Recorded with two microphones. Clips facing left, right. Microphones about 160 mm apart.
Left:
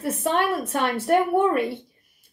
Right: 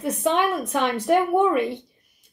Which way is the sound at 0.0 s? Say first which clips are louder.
Right 2 dB; centre (ahead or behind).